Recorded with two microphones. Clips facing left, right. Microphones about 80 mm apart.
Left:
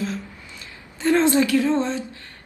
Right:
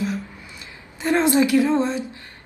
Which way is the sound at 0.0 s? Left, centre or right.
Centre.